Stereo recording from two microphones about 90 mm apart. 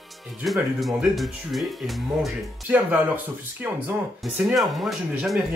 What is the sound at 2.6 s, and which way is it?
Speech, 20° right (ahead or behind).